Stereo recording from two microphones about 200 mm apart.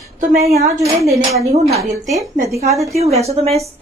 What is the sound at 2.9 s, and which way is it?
Speech, 30° right (ahead or behind).